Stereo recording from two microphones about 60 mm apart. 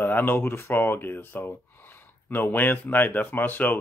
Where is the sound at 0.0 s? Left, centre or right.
Left.